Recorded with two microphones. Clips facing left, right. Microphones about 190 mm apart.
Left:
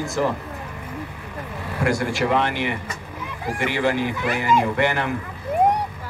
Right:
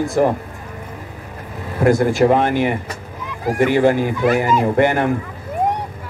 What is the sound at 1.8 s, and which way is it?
Speech, 45° right (ahead or behind).